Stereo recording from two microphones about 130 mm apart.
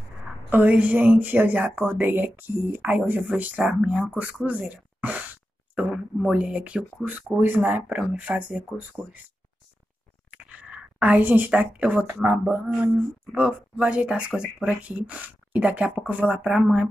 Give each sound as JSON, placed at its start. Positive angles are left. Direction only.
{"t": 0.5, "sound": "speech", "side_deg": -15}
{"t": 10.3, "sound": "speech", "side_deg": -10}